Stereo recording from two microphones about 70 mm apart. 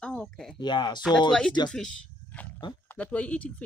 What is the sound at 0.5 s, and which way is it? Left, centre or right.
Speech, left.